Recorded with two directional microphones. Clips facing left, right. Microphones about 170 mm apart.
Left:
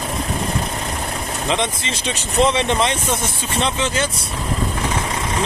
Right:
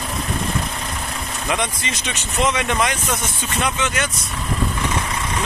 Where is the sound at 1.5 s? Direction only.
25° left (ahead or behind).